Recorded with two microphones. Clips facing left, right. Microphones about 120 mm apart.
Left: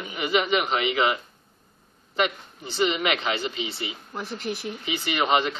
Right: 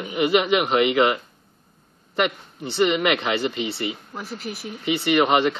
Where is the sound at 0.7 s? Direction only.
55° right (ahead or behind).